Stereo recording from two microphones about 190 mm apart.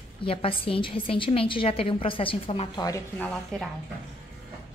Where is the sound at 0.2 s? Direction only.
30° left (ahead or behind).